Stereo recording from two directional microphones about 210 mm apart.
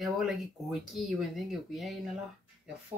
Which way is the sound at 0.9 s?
Centre (ahead or behind).